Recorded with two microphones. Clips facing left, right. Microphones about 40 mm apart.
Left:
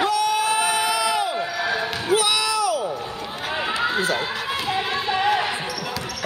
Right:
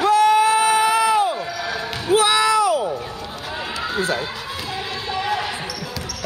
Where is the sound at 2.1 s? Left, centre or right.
Right.